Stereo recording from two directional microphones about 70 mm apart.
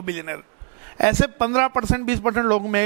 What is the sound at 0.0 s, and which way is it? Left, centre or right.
A man's voice, right.